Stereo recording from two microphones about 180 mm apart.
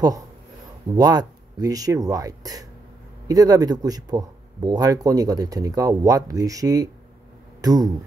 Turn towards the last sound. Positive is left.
turn(degrees=-20)  # may be behind; listen again after turning